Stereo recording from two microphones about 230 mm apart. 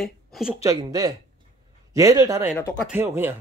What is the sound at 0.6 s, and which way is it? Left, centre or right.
A man's voice, centre.